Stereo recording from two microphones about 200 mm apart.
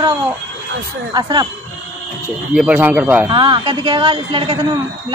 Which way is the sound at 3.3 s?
20° right (ahead or behind).